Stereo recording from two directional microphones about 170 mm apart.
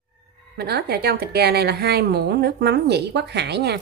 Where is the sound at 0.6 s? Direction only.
70° right (ahead or behind).